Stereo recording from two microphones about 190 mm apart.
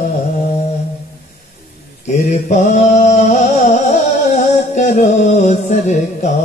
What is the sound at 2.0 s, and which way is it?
Mantra, 40° left (ahead or behind).